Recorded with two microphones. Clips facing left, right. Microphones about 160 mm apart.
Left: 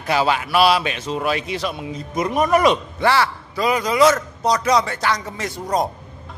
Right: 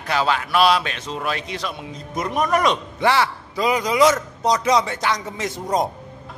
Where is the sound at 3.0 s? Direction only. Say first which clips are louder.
Right 1 dB; 15° right (ahead or behind).